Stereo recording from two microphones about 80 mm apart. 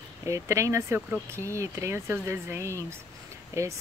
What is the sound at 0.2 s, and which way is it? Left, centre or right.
A woman's voice, right.